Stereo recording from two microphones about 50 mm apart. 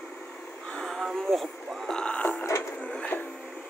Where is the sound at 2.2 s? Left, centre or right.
Left.